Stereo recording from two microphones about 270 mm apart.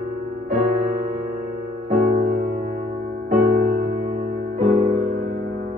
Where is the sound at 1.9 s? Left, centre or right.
Right.